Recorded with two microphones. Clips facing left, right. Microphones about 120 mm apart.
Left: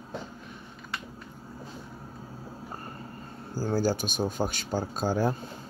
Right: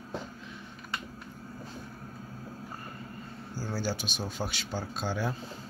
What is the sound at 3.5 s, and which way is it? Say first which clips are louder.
Speech: left 7 dB; 45° left (ahead or behind).